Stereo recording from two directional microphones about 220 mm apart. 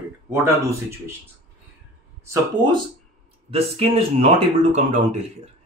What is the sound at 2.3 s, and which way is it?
Speech, 20° right (ahead or behind).